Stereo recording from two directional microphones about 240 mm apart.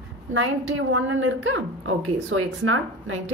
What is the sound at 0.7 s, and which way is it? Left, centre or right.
A woman's voice, right.